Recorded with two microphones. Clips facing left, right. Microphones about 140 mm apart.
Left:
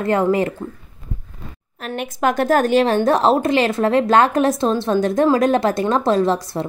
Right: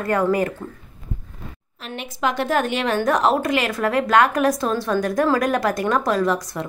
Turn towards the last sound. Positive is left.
turn(degrees=30)  # may be behind; listen again after turning